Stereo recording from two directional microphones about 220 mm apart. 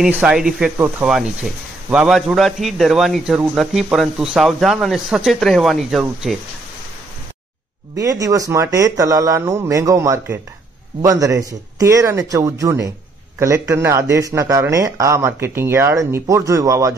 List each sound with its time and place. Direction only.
0.0 s a man's voice: 5° right (ahead or behind)
7.9 s speech: 15° right (ahead or behind)